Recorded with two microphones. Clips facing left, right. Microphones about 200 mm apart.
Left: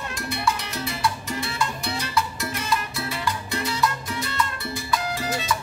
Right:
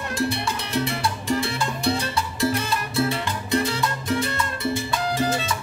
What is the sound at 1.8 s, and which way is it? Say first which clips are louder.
Salsa music: right 3 dB; 30° right (ahead or behind).